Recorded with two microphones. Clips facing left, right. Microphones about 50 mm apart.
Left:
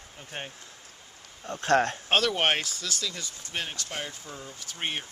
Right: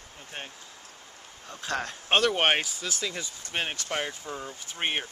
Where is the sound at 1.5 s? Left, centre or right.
Left.